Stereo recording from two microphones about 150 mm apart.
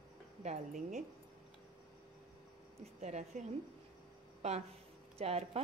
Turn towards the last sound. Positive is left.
turn(degrees=-40)  # may be behind; listen again after turning